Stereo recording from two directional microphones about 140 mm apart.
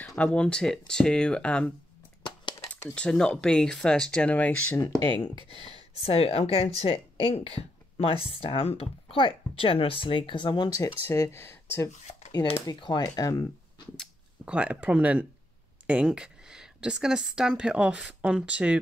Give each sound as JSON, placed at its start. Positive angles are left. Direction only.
{"t": 0.0, "sound": "speech", "side_deg": 10}
{"t": 2.9, "sound": "speech", "side_deg": 5}
{"t": 4.7, "sound": "speech", "side_deg": 25}
{"t": 5.5, "sound": "speech", "side_deg": 45}
{"t": 10.8, "sound": "speech", "side_deg": 20}
{"t": 12.8, "sound": "speech", "side_deg": 30}
{"t": 14.4, "sound": "speech", "side_deg": -10}